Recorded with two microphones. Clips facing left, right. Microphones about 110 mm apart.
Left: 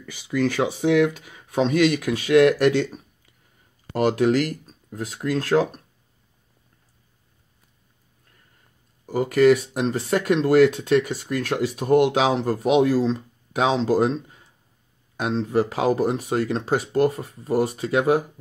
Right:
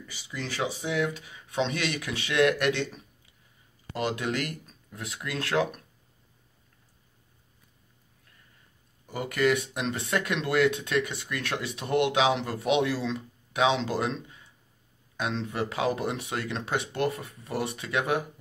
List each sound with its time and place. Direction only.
0.0 s speech: 50° left (ahead or behind); by 5.8 s 35° left (ahead or behind)
9.0 s speech: 40° left (ahead or behind)